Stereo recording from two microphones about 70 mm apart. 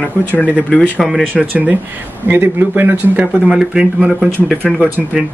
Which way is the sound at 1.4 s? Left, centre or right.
Right.